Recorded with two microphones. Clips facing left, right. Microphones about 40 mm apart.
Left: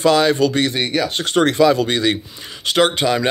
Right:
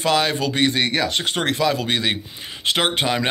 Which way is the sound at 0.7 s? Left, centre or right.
Right.